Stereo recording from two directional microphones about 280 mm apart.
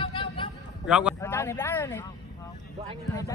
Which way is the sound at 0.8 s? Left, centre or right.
Centre.